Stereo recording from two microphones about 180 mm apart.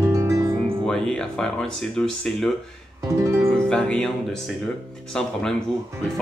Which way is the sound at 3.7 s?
5° left (ahead or behind).